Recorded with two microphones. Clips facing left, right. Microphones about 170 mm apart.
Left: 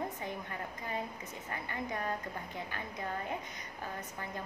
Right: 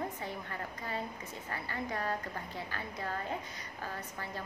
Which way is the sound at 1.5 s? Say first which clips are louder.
Right 1 dB; 15° left (ahead or behind).